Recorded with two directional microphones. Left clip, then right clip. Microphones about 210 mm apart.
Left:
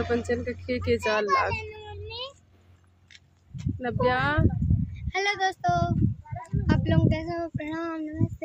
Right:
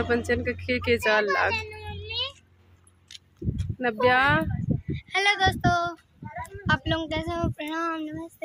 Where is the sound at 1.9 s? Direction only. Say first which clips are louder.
Right 6 dB; 40° left (ahead or behind).